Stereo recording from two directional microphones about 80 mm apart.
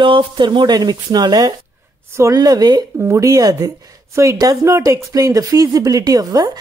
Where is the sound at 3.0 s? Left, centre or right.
Right.